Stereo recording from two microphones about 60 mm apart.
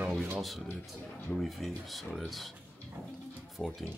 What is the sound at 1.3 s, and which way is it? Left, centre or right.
Speech, centre.